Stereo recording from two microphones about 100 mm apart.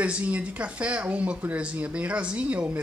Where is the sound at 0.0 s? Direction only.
15° right (ahead or behind).